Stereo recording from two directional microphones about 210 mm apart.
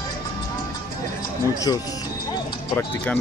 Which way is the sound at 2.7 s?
10° left (ahead or behind).